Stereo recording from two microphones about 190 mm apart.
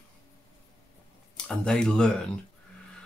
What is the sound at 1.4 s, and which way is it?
Speech, 5° left (ahead or behind).